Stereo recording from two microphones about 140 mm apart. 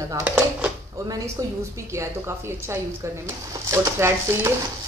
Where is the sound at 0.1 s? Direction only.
10° right (ahead or behind).